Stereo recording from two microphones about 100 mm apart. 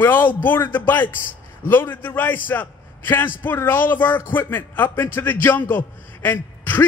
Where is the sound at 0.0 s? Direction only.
20° left (ahead or behind).